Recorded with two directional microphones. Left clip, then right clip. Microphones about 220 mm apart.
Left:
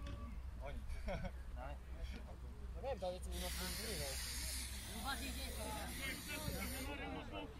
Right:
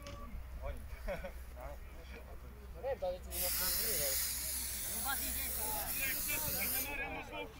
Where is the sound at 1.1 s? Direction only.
50° left (ahead or behind).